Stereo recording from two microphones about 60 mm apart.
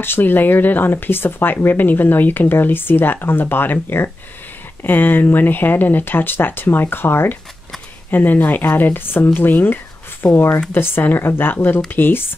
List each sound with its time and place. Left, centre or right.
0.0 s speech: left